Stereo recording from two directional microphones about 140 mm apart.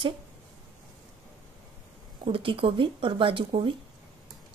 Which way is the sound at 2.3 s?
40° right (ahead or behind).